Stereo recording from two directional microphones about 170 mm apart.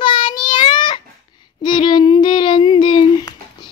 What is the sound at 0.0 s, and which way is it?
Child singing, 25° left (ahead or behind).